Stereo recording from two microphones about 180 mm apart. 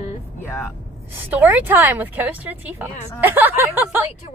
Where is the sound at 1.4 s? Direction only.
10° right (ahead or behind).